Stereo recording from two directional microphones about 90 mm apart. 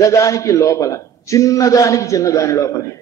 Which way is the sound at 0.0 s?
40° left (ahead or behind).